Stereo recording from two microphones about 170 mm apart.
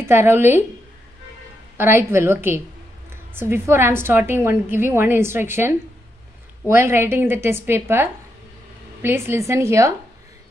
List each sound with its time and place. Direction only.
0.0 s a woman's voice: 15° right (ahead or behind)
1.8 s a woman's voice: 15° right (ahead or behind)